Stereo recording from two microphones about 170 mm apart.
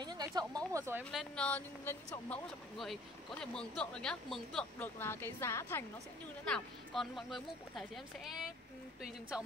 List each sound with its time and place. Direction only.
0.0 s speech: 25° right (ahead or behind)
1.1 s speech: 5° left (ahead or behind)
6.4 s speech: 5° left (ahead or behind)